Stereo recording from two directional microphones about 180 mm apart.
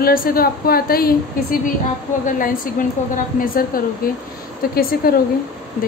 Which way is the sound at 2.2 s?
50° left (ahead or behind).